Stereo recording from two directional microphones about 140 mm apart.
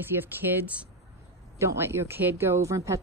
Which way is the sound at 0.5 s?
10° right (ahead or behind).